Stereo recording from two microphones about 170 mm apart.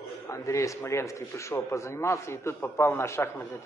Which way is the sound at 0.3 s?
15° left (ahead or behind).